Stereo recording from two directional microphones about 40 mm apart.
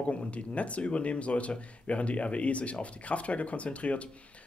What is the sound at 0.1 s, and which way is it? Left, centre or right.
Speech, left.